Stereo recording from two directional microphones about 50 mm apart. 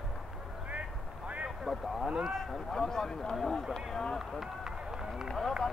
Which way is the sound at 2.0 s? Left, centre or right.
Centre.